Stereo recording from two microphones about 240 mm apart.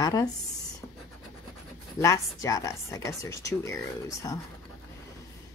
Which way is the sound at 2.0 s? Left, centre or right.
Centre.